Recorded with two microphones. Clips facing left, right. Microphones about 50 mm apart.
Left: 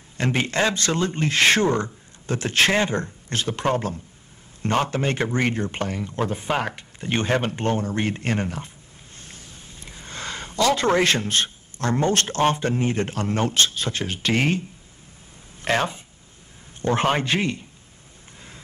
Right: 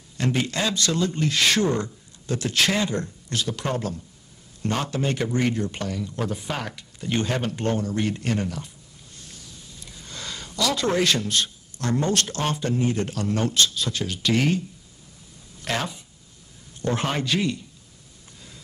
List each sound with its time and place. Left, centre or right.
0.2 s a man's voice: left
15.6 s speech: left